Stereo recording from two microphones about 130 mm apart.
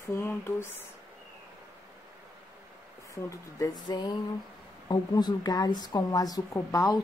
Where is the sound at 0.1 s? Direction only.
20° left (ahead or behind).